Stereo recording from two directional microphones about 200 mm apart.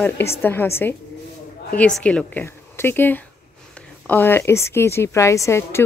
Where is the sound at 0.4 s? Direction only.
10° left (ahead or behind).